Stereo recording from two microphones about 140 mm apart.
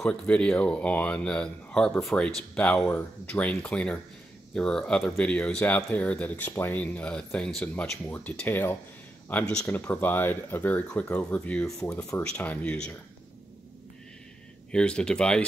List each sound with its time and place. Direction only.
0.0 s speech: 5° left (ahead or behind)
11.7 s speech: 20° left (ahead or behind)
12.2 s speech: 10° left (ahead or behind)
14.7 s speech: 5° left (ahead or behind)